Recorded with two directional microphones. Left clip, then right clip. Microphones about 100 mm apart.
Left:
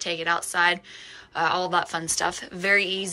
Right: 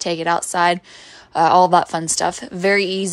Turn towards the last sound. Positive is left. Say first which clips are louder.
# right 5 dB
turn(degrees=-80)